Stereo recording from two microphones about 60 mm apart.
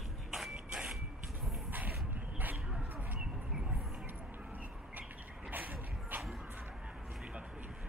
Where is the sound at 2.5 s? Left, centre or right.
Centre.